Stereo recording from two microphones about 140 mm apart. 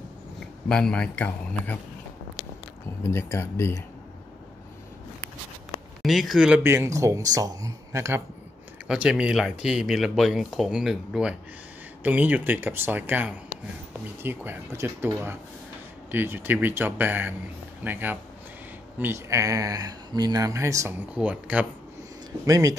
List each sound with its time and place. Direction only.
0.7 s speech: 5° left (ahead or behind)
3.0 s speech: 20° left (ahead or behind)
6.0 s speech: centre (ahead or behind)
6.6 s speech: 20° right (ahead or behind)
8.8 s speech: 5° right (ahead or behind)
21.1 s speech: 10° right (ahead or behind)
22.5 s speech: 25° right (ahead or behind)